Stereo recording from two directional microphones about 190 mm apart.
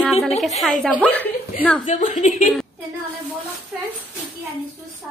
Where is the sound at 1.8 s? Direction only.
40° left (ahead or behind).